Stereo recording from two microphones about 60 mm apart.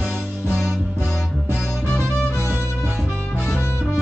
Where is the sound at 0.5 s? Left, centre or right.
Centre.